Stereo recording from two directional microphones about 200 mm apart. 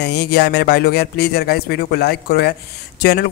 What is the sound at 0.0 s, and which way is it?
A man's voice, 55° left (ahead or behind).